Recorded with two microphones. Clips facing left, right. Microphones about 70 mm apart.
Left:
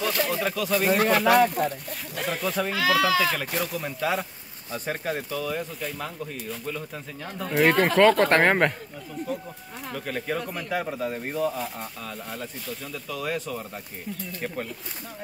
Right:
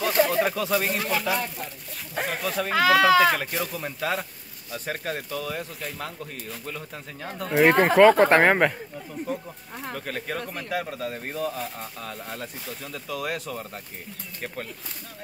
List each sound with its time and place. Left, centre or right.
0.1 s speech: right
0.8 s speech: left
2.4 s speech: centre
2.7 s speech: right
3.3 s speech: centre
7.9 s speech: centre
9.8 s speech: centre
10.9 s speech: centre